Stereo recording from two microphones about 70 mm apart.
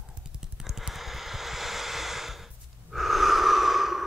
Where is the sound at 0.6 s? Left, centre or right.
Centre.